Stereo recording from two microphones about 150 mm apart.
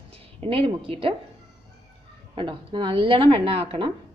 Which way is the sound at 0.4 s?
40° right (ahead or behind).